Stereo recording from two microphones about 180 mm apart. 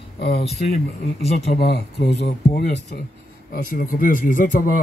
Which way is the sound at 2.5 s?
55° left (ahead or behind).